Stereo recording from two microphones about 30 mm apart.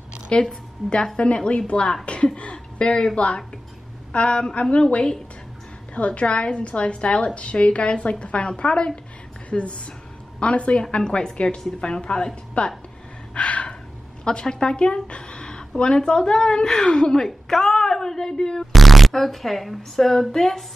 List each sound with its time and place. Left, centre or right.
0.3 s a woman's voice: left
2.5 s speech: left
4.1 s a woman's voice: left
5.9 s a woman's voice: left
10.8 s a woman's voice: left
12.6 s a woman's voice: left
13.3 s gasp: left
14.2 s a woman's voice: left
15.0 s a sound: left
15.8 s a woman's voice: left
17.1 s speech: centre
18.7 s speech: centre